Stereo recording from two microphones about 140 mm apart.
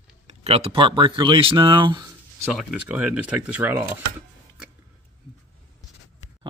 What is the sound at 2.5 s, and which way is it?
Chopping, 5° right (ahead or behind).